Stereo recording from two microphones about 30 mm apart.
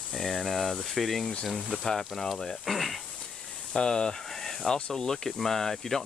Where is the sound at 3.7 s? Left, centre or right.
Left.